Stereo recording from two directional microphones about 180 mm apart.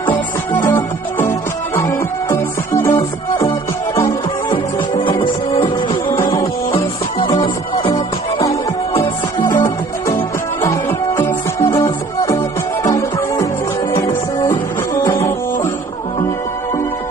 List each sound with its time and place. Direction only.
0.5 s music: 15° left (ahead or behind); by 6.1 s 30° left (ahead or behind)
6.1 s music: 15° left (ahead or behind)
7.3 s music: 30° left (ahead or behind)
9.6 s music: 15° left (ahead or behind)